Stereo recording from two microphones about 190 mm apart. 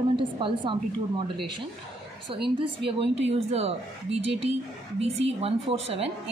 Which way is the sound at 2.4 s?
25° right (ahead or behind).